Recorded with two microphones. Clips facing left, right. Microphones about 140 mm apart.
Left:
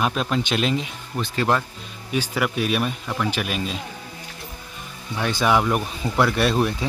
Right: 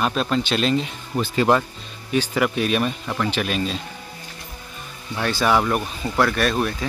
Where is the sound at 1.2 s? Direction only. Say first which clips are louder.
Right 4 dB; 5° right (ahead or behind).